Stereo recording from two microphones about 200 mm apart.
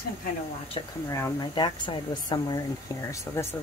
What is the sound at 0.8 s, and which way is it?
Speech, 25° left (ahead or behind).